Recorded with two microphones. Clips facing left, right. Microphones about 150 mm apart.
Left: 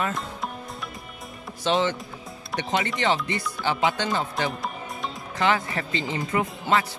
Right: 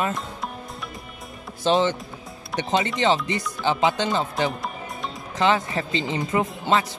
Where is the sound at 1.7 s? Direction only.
40° right (ahead or behind).